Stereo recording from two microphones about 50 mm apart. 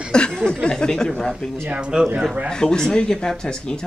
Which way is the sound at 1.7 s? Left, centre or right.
Right.